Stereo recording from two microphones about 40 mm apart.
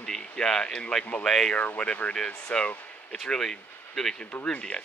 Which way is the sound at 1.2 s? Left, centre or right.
Centre.